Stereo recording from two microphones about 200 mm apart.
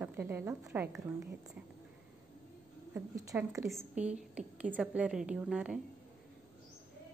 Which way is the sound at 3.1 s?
15° right (ahead or behind).